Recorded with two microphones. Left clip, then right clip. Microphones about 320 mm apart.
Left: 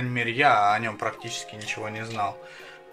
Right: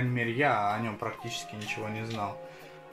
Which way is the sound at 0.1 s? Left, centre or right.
Left.